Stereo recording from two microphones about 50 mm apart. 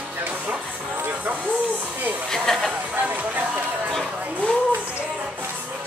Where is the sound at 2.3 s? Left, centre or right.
Centre.